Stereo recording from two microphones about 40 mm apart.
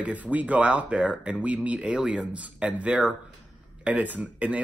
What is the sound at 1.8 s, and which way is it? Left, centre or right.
Speech, right.